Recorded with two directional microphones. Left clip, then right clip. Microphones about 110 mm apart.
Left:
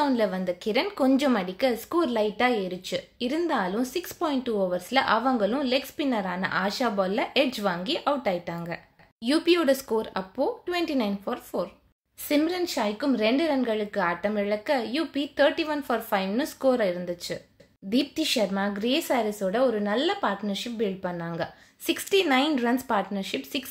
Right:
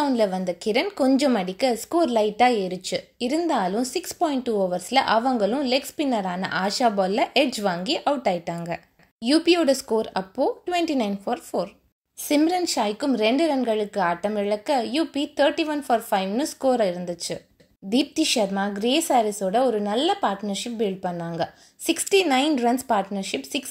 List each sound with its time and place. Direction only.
0.0 s a woman's voice: 30° right (ahead or behind)